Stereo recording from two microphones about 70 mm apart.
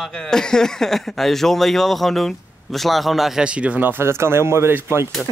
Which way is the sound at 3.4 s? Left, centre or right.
Centre.